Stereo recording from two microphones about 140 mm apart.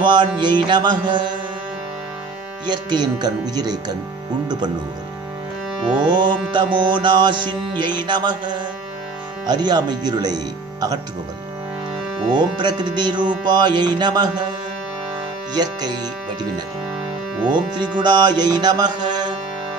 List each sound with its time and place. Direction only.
0.4 s music: 35° right (ahead or behind)
2.6 s speech: 30° right (ahead or behind)
5.9 s music: 35° right (ahead or behind)
12.3 s music: 35° right (ahead or behind)
15.5 s speech: 30° right (ahead or behind)
17.5 s music: 35° right (ahead or behind)